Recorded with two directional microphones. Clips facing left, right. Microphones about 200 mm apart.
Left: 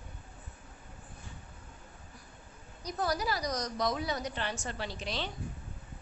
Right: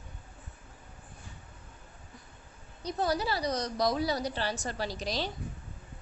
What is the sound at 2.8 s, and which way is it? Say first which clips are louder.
A woman's voice: right 2 dB; 30° right (ahead or behind).